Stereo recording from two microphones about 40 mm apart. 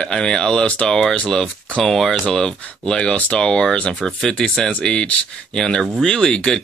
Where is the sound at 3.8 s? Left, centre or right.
Left.